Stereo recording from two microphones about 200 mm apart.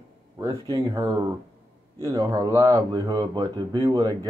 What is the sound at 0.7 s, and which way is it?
Speech, 15° right (ahead or behind).